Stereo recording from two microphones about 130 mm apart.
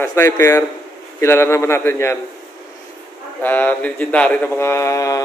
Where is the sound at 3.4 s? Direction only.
15° left (ahead or behind).